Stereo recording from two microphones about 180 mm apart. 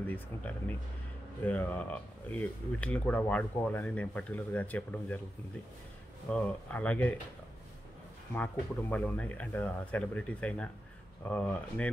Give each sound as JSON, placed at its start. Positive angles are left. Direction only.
{"t": 0.0, "sound": "speech", "side_deg": 10}
{"t": 6.3, "sound": "speech", "side_deg": 5}
{"t": 8.4, "sound": "speech", "side_deg": 10}